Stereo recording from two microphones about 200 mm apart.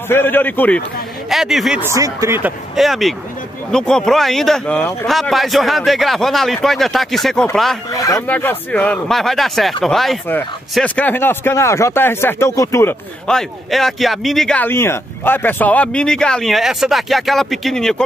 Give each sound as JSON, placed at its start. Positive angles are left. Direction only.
{"t": 0.1, "sound": "speech", "side_deg": 10}
{"t": 7.9, "sound": "speech", "side_deg": 15}
{"t": 13.3, "sound": "speech", "side_deg": 0}